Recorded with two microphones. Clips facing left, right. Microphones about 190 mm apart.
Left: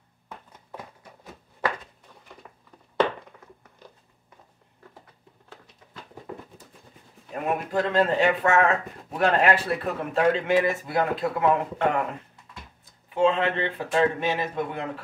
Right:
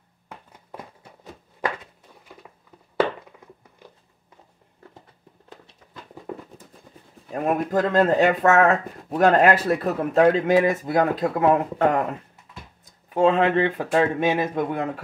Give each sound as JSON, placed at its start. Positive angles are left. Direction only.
{"t": 7.3, "sound": "speech", "side_deg": -45}
{"t": 13.1, "sound": "speech", "side_deg": -45}